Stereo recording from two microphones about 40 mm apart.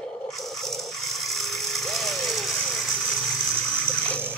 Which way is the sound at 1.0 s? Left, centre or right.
Centre.